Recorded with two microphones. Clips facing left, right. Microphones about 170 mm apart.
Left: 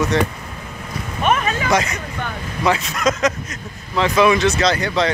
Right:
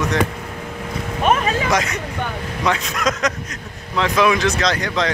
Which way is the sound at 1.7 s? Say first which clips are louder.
Left 1 dB; centre (ahead or behind).